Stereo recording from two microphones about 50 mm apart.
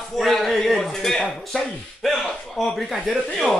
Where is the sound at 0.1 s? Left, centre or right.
Centre.